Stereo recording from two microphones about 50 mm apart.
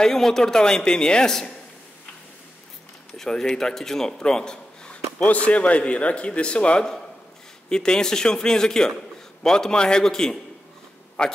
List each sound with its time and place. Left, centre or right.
0.0 s a man's voice: centre
3.2 s a man's voice: centre
5.2 s a man's voice: left